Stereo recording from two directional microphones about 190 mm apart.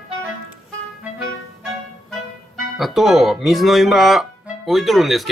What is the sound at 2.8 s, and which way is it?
Speech, centre (ahead or behind).